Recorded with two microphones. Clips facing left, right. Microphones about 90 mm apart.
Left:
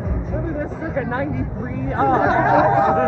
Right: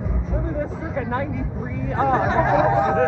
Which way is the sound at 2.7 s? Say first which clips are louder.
Left 3 dB; 55° left (ahead or behind).